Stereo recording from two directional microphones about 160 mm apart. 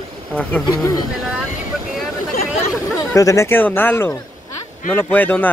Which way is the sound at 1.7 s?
Centre (ahead or behind).